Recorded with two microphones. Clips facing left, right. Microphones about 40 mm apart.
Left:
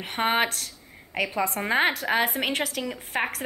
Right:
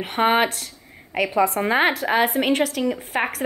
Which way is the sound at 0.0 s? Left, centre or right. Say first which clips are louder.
Right 5 dB; centre.